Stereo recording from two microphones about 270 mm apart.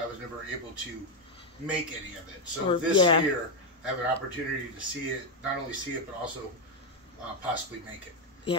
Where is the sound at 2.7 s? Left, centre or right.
Centre.